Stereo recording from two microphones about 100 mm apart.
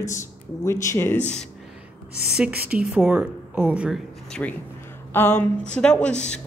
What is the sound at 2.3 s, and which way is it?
A woman's voice, 10° right (ahead or behind).